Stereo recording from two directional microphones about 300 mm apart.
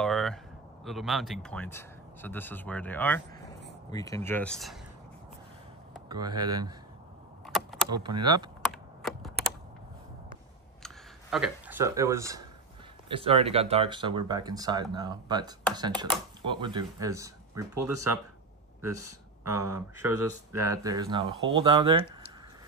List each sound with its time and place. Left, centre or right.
0.0 s a sound: centre
0.8 s speech: centre
6.0 s speech: centre
6.3 s speech: right
7.4 s a sound: centre
8.2 s speech: centre
8.7 s computer keyboard: centre
10.8 s speech: centre